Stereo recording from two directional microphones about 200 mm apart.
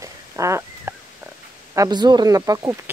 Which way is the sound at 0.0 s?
15° right (ahead or behind).